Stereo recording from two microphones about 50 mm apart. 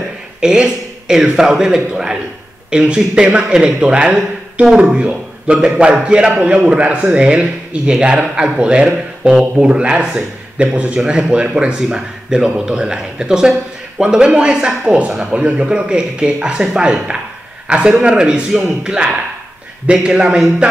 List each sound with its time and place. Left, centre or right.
0.4 s a man's voice: centre